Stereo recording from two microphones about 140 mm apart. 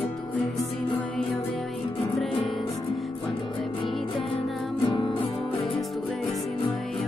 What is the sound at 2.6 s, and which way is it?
Music, 35° left (ahead or behind).